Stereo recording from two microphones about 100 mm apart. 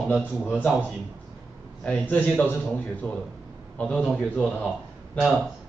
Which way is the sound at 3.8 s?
15° left (ahead or behind).